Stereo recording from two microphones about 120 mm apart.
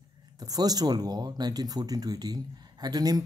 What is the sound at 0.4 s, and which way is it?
A man's voice, 35° right (ahead or behind).